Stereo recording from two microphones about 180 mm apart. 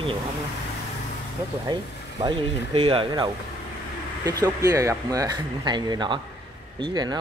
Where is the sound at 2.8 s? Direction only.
30° right (ahead or behind).